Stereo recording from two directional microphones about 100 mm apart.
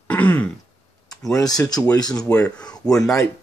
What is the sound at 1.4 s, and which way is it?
Speech, 40° left (ahead or behind).